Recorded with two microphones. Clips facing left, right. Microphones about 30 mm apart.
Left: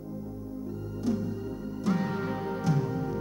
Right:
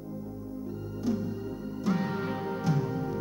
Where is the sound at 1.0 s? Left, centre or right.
Centre.